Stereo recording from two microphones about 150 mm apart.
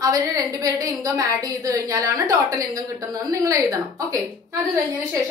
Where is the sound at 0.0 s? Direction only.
25° right (ahead or behind).